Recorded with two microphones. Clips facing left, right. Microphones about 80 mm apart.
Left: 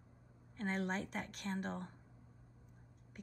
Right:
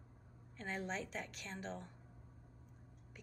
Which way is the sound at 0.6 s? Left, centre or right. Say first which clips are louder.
Left 4 dB; left.